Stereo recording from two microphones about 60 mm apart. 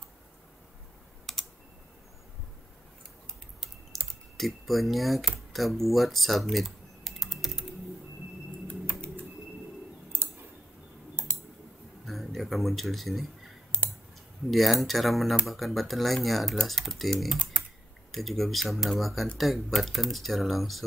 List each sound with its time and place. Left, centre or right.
1.3 s typing: centre
3.9 s typing: centre
4.4 s speech: centre
8.6 s typing: centre
11.2 s tick: right
12.1 s speech: centre
14.5 s speech: centre